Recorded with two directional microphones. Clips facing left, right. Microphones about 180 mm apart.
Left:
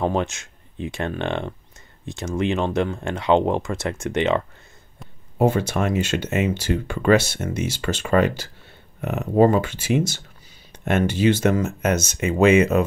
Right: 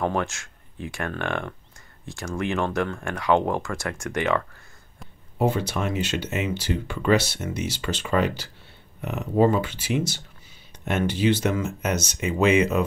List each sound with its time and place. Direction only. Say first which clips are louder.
0.0 s speech: left 3 dB; 20° left (ahead or behind)
5.4 s speech: left 4 dB; 50° left (ahead or behind)